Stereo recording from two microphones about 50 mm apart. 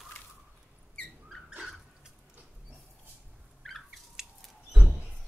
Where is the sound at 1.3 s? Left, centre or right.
Centre.